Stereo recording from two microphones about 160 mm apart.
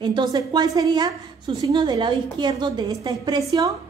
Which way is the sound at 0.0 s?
30° right (ahead or behind).